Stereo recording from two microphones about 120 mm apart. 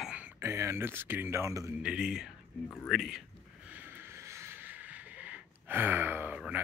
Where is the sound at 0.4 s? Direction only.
25° right (ahead or behind).